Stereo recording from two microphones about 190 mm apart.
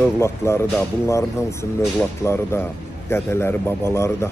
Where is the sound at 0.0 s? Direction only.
15° left (ahead or behind).